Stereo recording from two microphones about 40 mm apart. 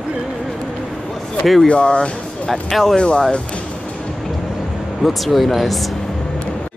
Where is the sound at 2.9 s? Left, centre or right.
Left.